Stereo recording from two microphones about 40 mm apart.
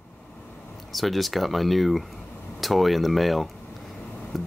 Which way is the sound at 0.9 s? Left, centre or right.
Centre.